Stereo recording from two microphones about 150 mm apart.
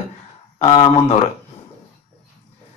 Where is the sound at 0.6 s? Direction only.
35° left (ahead or behind).